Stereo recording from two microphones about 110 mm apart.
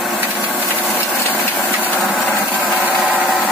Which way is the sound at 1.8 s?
15° left (ahead or behind).